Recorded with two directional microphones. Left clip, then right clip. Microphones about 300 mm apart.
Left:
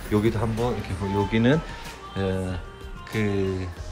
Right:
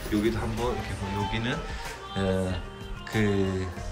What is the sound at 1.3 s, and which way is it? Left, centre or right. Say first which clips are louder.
Speech: left 8 dB; centre.